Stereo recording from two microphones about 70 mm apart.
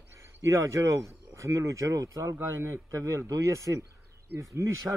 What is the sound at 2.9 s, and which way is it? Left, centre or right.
Speech, right.